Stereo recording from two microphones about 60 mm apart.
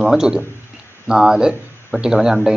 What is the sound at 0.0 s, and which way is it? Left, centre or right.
A man's voice, centre.